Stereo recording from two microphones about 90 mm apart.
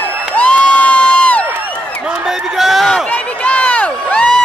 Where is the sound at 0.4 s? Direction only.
15° left (ahead or behind).